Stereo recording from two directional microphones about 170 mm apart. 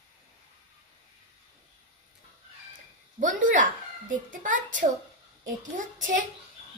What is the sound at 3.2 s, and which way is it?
A child's voice, 50° right (ahead or behind).